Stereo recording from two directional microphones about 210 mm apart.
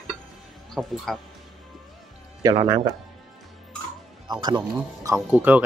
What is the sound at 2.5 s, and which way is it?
Speech, 25° right (ahead or behind).